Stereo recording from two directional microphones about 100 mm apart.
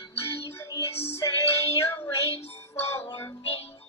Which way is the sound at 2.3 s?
90° left.